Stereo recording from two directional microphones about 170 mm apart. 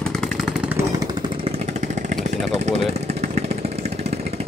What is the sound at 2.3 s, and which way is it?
Vehicle, 40° right (ahead or behind).